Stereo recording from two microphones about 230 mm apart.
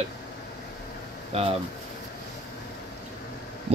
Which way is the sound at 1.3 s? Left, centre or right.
Right.